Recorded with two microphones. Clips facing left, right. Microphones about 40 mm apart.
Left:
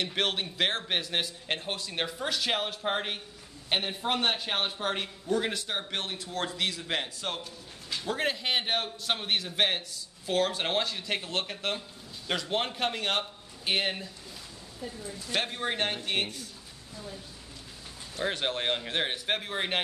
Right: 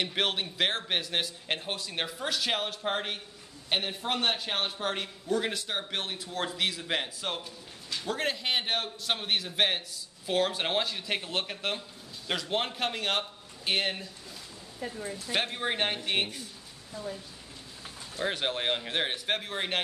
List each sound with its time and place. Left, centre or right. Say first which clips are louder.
0.1 s a man's voice: even; centre
7.9 s a man's voice: left 1 dB; centre
14.8 s speech: right 2 dB; right
15.3 s a man's voice: even; centre
18.2 s a man's voice: even; centre